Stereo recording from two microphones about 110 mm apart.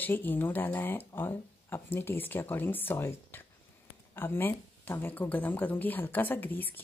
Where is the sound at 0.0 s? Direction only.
15° left (ahead or behind).